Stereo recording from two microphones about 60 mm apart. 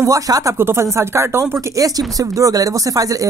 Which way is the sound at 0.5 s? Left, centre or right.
Right.